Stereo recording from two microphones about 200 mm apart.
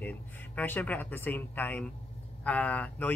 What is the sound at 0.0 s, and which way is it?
Speech, 10° left (ahead or behind).